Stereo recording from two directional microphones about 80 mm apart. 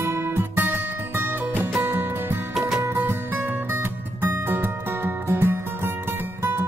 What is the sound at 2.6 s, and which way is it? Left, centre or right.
Music, centre.